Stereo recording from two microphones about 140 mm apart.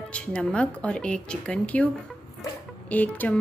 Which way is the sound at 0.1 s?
10° left (ahead or behind).